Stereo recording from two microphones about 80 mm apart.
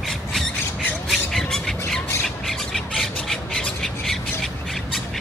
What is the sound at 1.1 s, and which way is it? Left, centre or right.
Squawk, centre.